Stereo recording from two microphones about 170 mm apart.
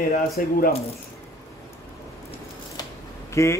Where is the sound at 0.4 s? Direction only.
60° left (ahead or behind).